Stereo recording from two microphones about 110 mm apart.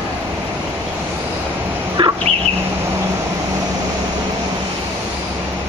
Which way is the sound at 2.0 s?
50° right (ahead or behind).